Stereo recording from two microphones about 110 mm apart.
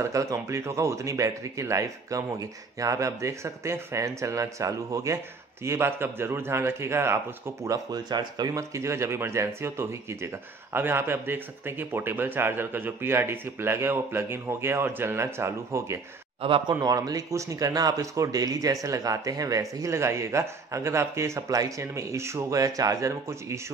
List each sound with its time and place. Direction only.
0.0 s speech: 30° right (ahead or behind)
7.6 s speech: 35° right (ahead or behind)
16.3 s a man's voice: 55° right (ahead or behind)
16.8 s speech: 35° right (ahead or behind)